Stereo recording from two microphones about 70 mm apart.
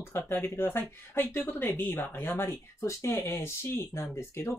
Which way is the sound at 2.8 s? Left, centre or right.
Left.